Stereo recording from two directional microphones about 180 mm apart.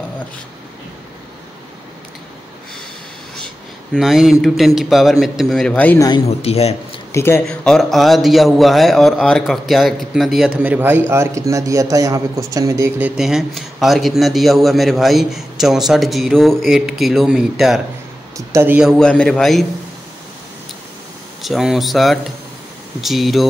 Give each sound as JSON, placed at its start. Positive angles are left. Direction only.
{"t": 3.9, "sound": "speech", "side_deg": 0}
{"t": 6.2, "sound": "speech", "side_deg": 35}
{"t": 7.1, "sound": "a man's voice", "side_deg": 15}
{"t": 7.4, "sound": "speech", "side_deg": 0}
{"t": 18.5, "sound": "speech", "side_deg": -10}
{"t": 21.4, "sound": "speech", "side_deg": 0}